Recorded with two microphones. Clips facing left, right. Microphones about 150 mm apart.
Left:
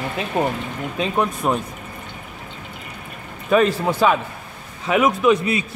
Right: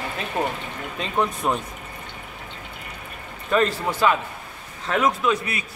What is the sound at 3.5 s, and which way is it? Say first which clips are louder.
A man's voice: left 5 dB; 15° left (ahead or behind).